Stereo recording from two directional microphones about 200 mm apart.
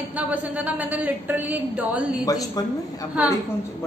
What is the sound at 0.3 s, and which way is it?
A woman's voice, 5° right (ahead or behind).